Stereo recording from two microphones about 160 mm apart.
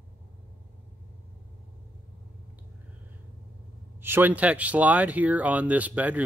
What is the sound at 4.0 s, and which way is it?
Speech, 15° right (ahead or behind).